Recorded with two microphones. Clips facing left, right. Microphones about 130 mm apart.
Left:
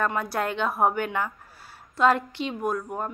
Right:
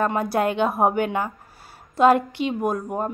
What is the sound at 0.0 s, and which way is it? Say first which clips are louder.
Speech: right 5 dB; 20° right (ahead or behind).